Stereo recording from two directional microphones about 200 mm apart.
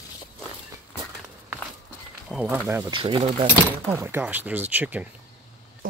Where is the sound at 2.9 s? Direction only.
25° right (ahead or behind).